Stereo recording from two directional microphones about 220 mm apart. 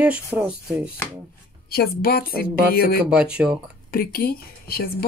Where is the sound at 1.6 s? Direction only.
45° left (ahead or behind).